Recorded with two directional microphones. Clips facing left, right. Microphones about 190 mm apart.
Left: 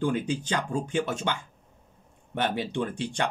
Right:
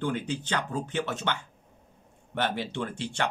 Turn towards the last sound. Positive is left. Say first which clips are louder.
# left 3 dB
turn(degrees=15)  # may be behind; listen again after turning